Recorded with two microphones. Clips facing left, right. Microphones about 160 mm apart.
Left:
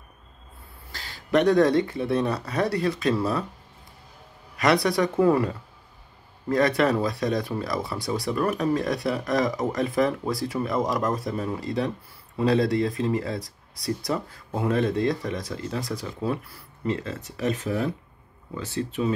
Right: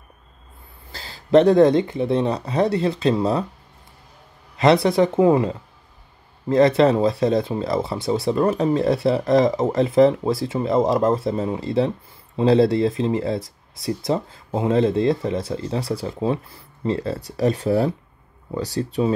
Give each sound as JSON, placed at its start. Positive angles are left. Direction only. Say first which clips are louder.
{"t": 0.9, "sound": "speech", "louder": "right 7 dB", "side_deg": -30}
{"t": 4.8, "sound": "speech", "louder": "right 5 dB", "side_deg": -25}